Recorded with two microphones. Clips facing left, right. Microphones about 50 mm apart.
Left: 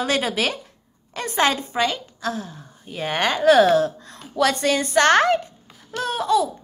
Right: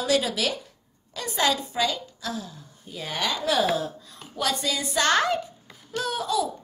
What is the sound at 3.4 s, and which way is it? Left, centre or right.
A woman's voice, left.